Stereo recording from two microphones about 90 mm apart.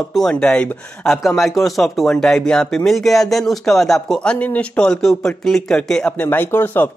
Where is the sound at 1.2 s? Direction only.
Centre (ahead or behind).